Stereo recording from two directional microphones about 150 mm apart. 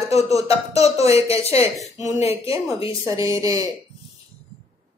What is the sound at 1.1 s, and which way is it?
Speech, 40° left (ahead or behind).